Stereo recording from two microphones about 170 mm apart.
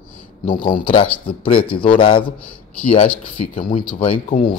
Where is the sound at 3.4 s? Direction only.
35° left (ahead or behind).